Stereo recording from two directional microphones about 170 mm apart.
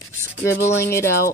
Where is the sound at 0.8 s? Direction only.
15° left (ahead or behind).